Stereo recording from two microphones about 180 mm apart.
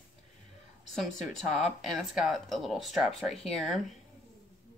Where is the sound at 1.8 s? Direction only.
Centre (ahead or behind).